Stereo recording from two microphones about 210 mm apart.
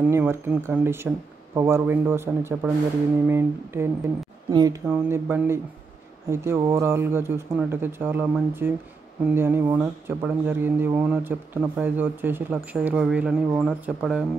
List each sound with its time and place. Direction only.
0.0 s speech: 10° right (ahead or behind)